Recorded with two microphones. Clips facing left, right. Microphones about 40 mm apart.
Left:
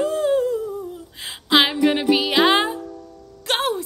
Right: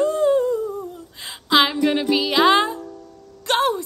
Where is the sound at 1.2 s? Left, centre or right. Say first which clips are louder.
Even; centre.